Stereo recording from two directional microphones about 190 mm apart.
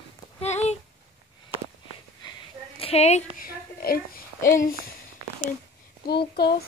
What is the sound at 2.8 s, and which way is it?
Speech, 35° left (ahead or behind).